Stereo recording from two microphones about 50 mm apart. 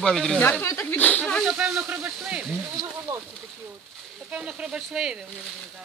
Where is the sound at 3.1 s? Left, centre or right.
Right.